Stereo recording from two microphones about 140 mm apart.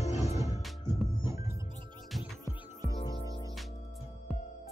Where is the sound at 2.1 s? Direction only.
Centre (ahead or behind).